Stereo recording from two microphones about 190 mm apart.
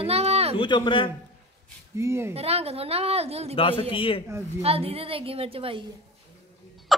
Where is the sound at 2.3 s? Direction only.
30° right (ahead or behind).